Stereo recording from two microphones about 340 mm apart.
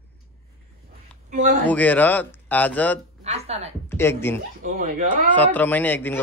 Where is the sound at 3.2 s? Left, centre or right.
Centre.